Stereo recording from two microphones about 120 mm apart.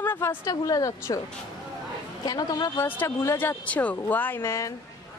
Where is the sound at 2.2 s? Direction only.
30° left (ahead or behind).